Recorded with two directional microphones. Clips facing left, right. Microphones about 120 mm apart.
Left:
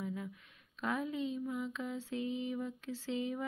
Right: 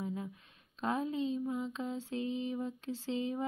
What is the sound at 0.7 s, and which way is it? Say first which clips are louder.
Mantra: right 3 dB; 30° right (ahead or behind).